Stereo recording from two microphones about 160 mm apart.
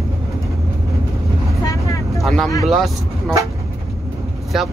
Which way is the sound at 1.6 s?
20° left (ahead or behind).